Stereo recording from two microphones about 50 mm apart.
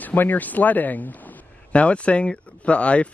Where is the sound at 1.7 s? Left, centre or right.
Left.